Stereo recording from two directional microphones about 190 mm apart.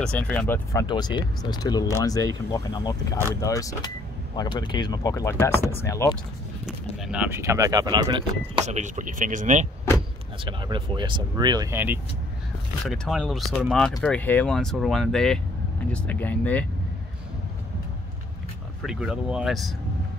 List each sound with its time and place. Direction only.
0.0 s speech: 5° left (ahead or behind)
0.8 s speech: 20° left (ahead or behind)
6.6 s speech: 5° right (ahead or behind); by 8.2 s 20° right (ahead or behind)
8.6 s speech: 40° right (ahead or behind)
10.4 s speech: 25° right (ahead or behind)
12.8 s speech: centre (ahead or behind)
18.8 s speech: centre (ahead or behind)